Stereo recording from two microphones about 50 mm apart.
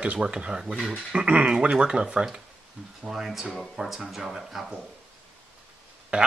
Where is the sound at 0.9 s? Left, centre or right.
Right.